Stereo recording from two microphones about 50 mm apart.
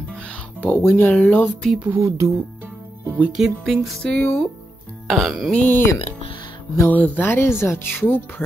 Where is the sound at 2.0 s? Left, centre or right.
Right.